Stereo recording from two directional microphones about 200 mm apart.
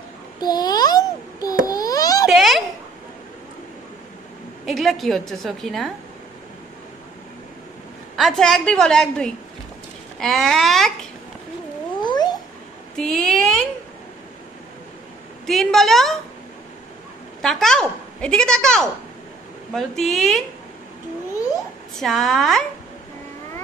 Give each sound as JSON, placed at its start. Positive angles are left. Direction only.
{"t": 0.4, "sound": "child singing", "side_deg": 20}
{"t": 1.7, "sound": "a sound", "side_deg": 20}
{"t": 2.2, "sound": "babbling", "side_deg": 0}
{"t": 4.6, "sound": "a woman's voice", "side_deg": 0}
{"t": 8.2, "sound": "a woman's voice", "side_deg": 0}
{"t": 10.1, "sound": "a sound", "side_deg": 0}
{"t": 12.0, "sound": "cat", "side_deg": 20}
{"t": 12.9, "sound": "a sound", "side_deg": 5}
{"t": 15.4, "sound": "a woman's voice", "side_deg": 0}
{"t": 17.4, "sound": "a woman's voice", "side_deg": 0}
{"t": 21.9, "sound": "a woman's voice", "side_deg": 0}